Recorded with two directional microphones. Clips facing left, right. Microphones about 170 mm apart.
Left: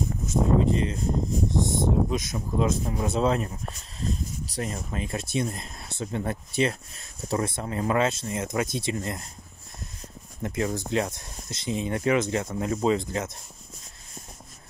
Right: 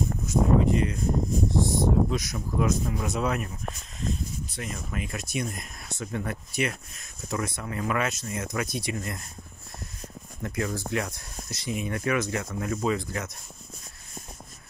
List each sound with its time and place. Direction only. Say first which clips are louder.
0.3 s speech: even; 25° left (ahead or behind)
10.4 s speech: left 2 dB; 20° left (ahead or behind)